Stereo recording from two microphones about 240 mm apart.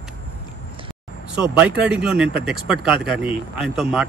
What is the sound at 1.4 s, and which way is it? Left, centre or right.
Speech, centre.